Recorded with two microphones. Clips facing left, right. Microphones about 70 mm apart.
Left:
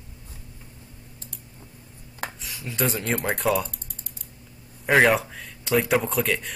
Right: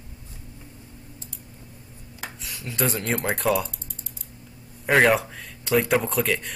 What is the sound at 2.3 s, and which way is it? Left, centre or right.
Speech, centre.